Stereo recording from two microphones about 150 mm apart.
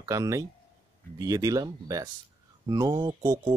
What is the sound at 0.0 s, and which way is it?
Speech, 20° right (ahead or behind).